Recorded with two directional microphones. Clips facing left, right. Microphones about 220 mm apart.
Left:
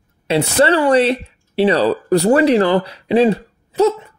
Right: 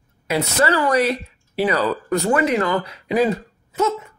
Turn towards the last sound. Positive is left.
turn(degrees=35)  # may be behind; listen again after turning